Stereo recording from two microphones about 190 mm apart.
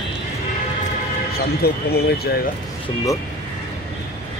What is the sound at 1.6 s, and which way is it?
Speech, 55° left (ahead or behind).